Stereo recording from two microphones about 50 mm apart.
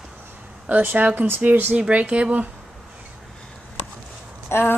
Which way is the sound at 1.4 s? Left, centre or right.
Right.